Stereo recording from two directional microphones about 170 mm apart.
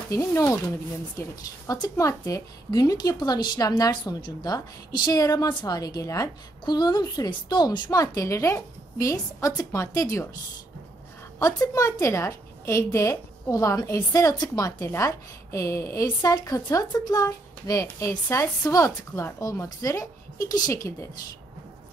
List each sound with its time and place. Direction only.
0.1 s a woman's voice: 15° left (ahead or behind)
11.3 s a woman's voice: 20° left (ahead or behind)